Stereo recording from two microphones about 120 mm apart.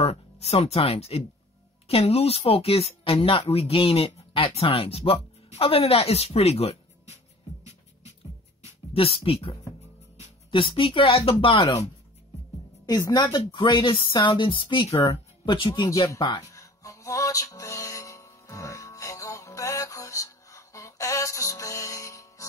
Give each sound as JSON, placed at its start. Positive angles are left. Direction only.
{"t": 0.0, "sound": "speech", "side_deg": 60}
{"t": 8.9, "sound": "speech", "side_deg": 50}
{"t": 13.1, "sound": "speech", "side_deg": 35}
{"t": 15.9, "sound": "speech", "side_deg": 30}
{"t": 16.4, "sound": "music", "side_deg": 25}